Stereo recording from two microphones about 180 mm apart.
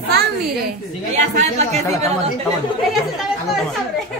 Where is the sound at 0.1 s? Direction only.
60° right (ahead or behind).